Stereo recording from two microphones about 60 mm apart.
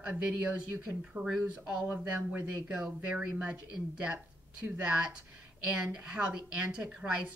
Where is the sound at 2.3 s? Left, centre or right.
Centre.